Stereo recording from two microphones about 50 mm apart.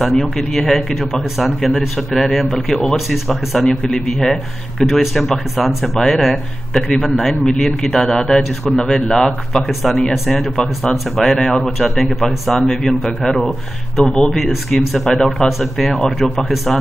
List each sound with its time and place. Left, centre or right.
0.0 s speech: centre
2.4 s speech: centre
2.8 s speech: centre
3.6 s a man's voice: centre
11.3 s a man's voice: centre
11.6 s a man's voice: centre
14.4 s speech: centre